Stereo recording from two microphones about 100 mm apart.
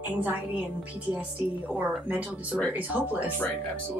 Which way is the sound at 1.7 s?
15° right (ahead or behind).